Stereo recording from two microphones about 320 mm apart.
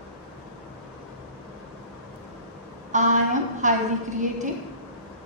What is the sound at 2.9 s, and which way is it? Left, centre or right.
Speech, right.